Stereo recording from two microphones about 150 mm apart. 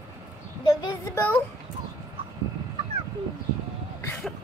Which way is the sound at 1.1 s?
10° left (ahead or behind).